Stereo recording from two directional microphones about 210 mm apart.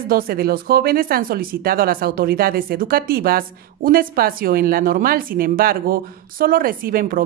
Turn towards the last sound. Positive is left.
turn(degrees=-45)  # may be behind; listen again after turning